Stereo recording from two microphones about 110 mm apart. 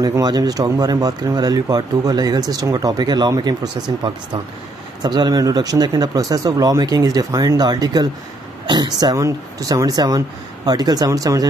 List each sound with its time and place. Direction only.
0.0 s speech: 35° right (ahead or behind)
5.0 s speech: 40° right (ahead or behind)